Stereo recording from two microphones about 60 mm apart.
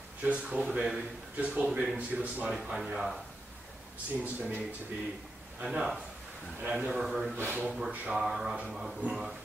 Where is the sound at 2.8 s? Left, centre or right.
Centre.